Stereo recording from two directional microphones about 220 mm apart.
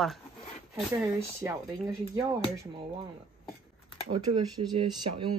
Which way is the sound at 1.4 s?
10° right (ahead or behind).